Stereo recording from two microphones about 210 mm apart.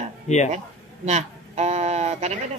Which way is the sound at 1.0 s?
30° right (ahead or behind).